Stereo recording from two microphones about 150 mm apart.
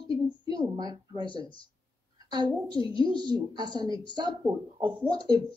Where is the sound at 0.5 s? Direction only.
25° right (ahead or behind).